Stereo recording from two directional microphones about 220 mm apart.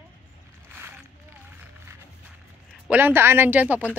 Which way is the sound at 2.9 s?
10° right (ahead or behind).